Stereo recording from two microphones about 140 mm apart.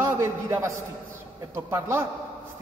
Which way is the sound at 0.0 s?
20° right (ahead or behind).